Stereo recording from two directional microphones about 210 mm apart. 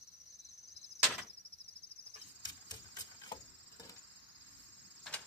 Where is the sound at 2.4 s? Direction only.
20° left (ahead or behind).